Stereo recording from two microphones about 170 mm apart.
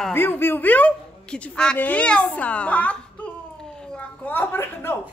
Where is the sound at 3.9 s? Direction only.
10° left (ahead or behind).